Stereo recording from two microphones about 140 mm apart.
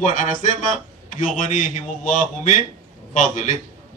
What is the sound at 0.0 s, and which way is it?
A man's voice, 65° left (ahead or behind).